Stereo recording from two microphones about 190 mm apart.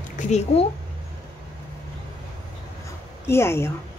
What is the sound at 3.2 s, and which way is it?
Speech, 15° left (ahead or behind).